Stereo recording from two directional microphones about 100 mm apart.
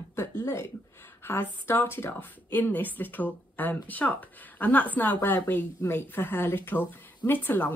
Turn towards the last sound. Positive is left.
turn(degrees=20)  # may be behind; listen again after turning